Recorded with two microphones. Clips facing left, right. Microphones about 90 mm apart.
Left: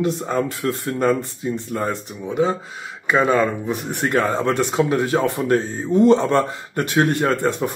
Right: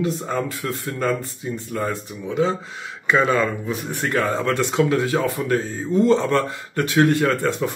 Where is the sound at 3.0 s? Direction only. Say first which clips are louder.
Left 1 dB; 10° left (ahead or behind).